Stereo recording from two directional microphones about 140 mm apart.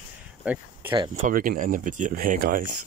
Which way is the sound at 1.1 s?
70° right (ahead or behind).